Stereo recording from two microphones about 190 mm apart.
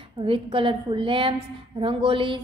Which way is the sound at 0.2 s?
25° right (ahead or behind).